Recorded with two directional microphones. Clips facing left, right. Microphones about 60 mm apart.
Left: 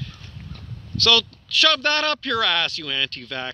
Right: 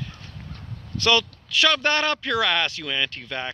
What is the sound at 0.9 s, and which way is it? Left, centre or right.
Speech, right.